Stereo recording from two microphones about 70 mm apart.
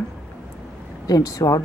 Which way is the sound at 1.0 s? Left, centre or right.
Left.